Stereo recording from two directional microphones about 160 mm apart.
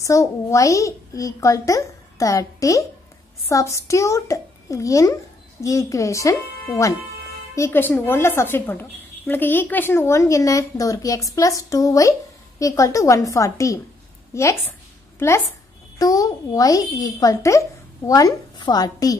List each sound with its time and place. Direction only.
0.0 s a woman's voice: 20° left (ahead or behind)
7.5 s a woman's voice: 15° left (ahead or behind)
14.3 s a sound: 15° left (ahead or behind)
16.0 s a woman's voice: 20° left (ahead or behind)